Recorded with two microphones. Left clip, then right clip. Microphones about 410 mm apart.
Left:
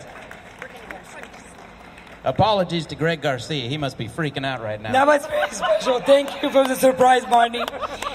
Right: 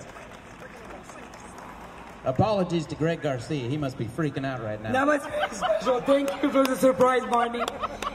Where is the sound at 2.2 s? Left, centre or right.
Left.